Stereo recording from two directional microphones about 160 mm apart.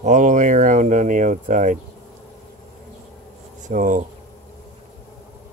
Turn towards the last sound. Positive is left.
turn(degrees=-55)  # may be behind; listen again after turning